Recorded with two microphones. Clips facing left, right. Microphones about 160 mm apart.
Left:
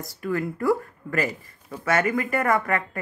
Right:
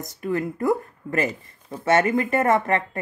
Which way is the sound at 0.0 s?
20° right (ahead or behind).